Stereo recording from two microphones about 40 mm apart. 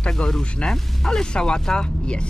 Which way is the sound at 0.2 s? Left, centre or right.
Left.